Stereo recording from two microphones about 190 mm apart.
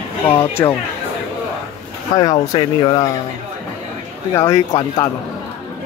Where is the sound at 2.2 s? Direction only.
20° left (ahead or behind).